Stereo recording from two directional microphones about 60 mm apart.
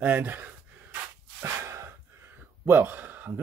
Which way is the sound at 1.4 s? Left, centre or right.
Right.